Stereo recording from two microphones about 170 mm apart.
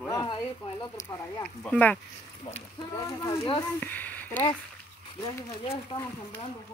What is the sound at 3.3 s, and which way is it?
Speech, 35° left (ahead or behind).